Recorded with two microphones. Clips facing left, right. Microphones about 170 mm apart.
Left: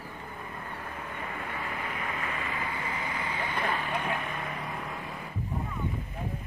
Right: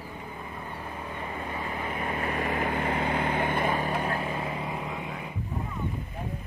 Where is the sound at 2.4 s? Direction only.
60° right (ahead or behind).